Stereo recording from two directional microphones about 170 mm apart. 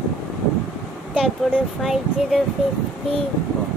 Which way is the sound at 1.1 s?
Centre (ahead or behind).